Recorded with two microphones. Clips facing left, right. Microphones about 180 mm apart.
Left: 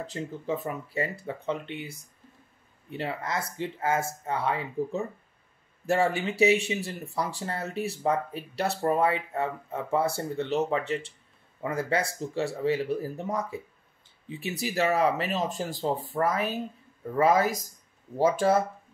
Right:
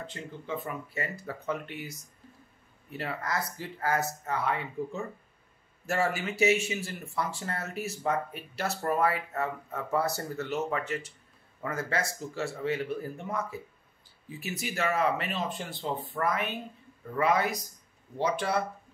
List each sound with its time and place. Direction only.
0.0 s speech: 40° left (ahead or behind)